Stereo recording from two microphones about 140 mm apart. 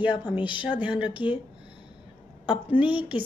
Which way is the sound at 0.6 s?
10° right (ahead or behind).